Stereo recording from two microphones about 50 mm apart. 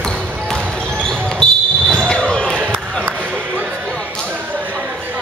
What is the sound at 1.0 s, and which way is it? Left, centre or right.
Basketball bounce, centre.